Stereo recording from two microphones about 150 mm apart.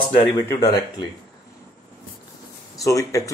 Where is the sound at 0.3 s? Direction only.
20° left (ahead or behind).